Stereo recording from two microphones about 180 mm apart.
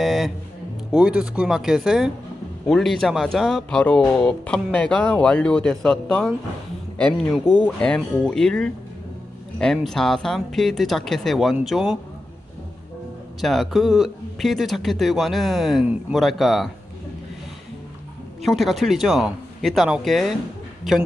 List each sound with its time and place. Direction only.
0.0 s music: centre (ahead or behind)
0.9 s speech: 5° right (ahead or behind)
9.8 s speech: centre (ahead or behind)
13.4 s speech: centre (ahead or behind)
18.4 s speech: centre (ahead or behind)